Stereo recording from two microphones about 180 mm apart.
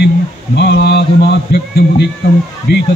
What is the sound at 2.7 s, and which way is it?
Speech, 70° left (ahead or behind).